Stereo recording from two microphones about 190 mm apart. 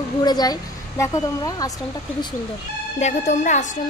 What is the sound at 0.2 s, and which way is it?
Speech, 20° left (ahead or behind).